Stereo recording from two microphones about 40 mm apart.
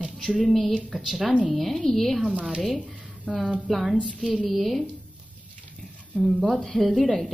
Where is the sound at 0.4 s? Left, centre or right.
Centre.